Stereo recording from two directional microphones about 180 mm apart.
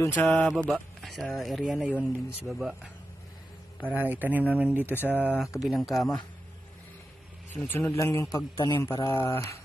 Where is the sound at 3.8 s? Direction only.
10° right (ahead or behind).